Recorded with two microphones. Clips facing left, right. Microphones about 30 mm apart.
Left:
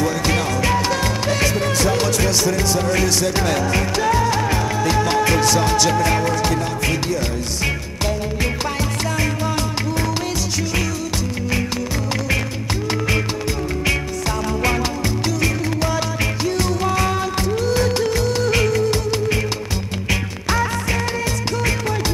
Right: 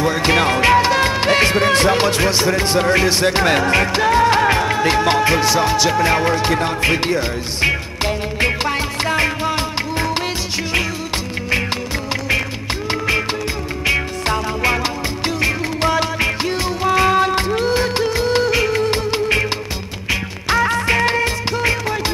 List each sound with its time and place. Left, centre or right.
0.0 s music: right
15.8 s music: right
20.4 s music: right